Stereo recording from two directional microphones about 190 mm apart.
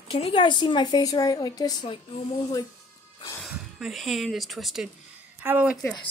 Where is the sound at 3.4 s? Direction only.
Centre (ahead or behind).